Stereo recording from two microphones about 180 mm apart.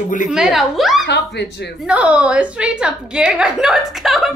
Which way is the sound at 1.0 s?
70° left (ahead or behind).